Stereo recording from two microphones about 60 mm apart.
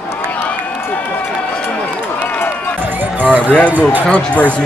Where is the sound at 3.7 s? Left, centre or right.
Right.